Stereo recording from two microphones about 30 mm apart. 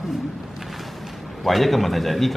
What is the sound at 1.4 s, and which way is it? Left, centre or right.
Speech, centre.